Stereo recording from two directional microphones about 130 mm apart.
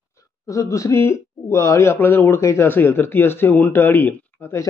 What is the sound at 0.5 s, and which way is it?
Speech, 25° left (ahead or behind).